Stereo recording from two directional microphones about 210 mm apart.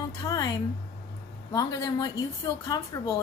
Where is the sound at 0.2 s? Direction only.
15° left (ahead or behind).